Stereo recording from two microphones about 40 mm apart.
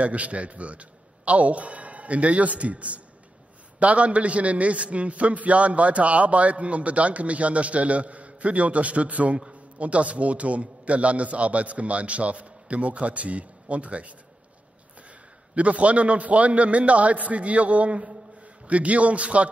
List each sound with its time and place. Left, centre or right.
0.0 s a man's voice: right
15.5 s a man's voice: right